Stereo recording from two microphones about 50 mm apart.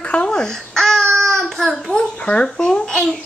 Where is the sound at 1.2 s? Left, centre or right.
Centre.